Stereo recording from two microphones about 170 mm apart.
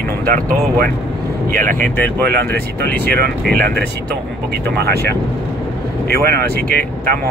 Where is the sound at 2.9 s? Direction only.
70° right (ahead or behind).